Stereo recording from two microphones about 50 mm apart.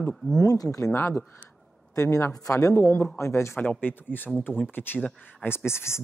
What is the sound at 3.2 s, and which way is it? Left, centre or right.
Speech, left.